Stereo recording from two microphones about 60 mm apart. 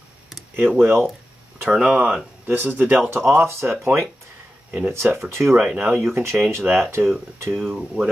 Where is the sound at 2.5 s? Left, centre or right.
Right.